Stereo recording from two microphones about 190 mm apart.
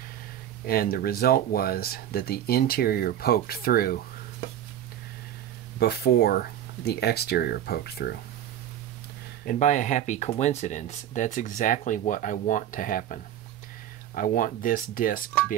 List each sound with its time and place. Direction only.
0.7 s speech: 50° left (ahead or behind)
5.8 s speech: 55° left (ahead or behind)
9.4 s speech: 40° left (ahead or behind)